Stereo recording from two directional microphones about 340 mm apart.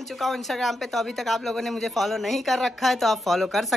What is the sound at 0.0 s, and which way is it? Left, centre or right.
A man's voice, centre.